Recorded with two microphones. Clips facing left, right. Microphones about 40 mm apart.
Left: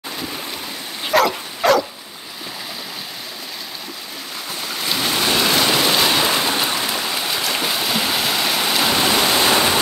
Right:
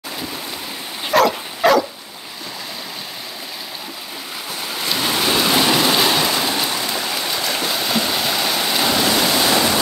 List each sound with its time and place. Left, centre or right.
1.0 s dog: centre
4.6 s rain: centre
6.2 s a sound: centre
6.9 s rain: centre
7.4 s vehicle: centre
9.0 s a sound: centre